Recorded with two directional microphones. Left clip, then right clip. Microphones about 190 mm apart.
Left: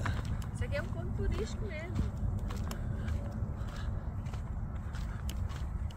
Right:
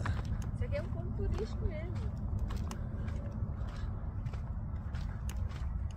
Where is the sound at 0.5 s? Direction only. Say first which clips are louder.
Left 2 dB; 25° left (ahead or behind).